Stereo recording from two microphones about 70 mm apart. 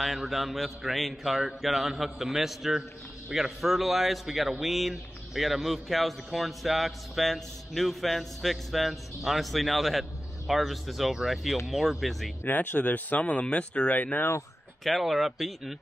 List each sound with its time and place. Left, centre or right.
0.0 s a man's voice: centre
12.4 s speech: left
14.9 s a man's voice: centre